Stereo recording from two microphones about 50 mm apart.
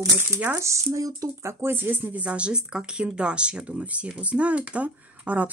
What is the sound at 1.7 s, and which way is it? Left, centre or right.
Speech, right.